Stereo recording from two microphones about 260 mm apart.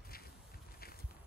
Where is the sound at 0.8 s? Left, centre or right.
Left.